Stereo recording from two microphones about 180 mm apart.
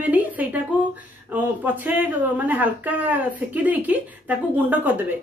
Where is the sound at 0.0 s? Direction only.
10° right (ahead or behind).